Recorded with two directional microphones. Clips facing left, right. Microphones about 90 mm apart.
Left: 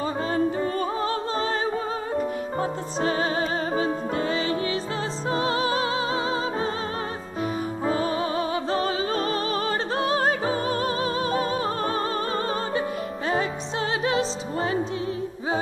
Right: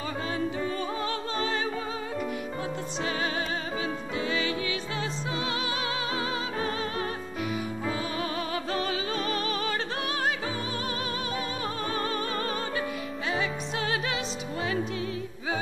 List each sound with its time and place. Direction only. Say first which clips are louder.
0.3 s music: left 6 dB; 40° left (ahead or behind)
3.0 s music: left 7 dB; 35° left (ahead or behind)
7.8 s music: left 10 dB; 40° left (ahead or behind)
13.3 s music: left 4 dB; 40° left (ahead or behind)